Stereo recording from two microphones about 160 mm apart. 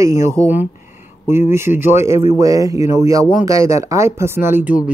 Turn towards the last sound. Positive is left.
turn(degrees=-10)  # may be behind; listen again after turning